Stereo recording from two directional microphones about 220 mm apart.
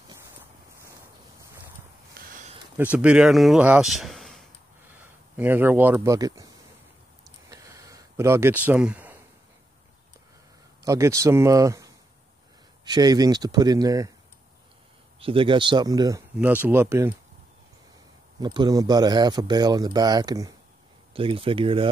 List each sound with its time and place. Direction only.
2.1 s a sound: 40° right (ahead or behind)
2.8 s speech: 5° right (ahead or behind)
7.4 s a sound: 15° right (ahead or behind)
10.8 s speech: 15° right (ahead or behind)
15.1 s speech: 25° right (ahead or behind)
18.4 s speech: 20° right (ahead or behind)